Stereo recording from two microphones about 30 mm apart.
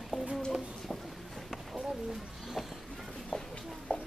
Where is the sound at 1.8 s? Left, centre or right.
Centre.